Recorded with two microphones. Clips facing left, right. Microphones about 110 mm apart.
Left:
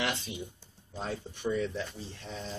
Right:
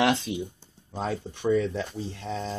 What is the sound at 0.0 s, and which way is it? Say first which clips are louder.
Speech: right 10 dB; 90° right.